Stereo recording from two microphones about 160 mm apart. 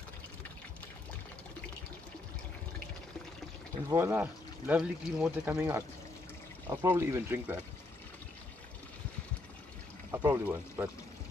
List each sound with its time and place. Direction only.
3.9 s speech: 15° right (ahead or behind)
10.1 s speech: 15° right (ahead or behind)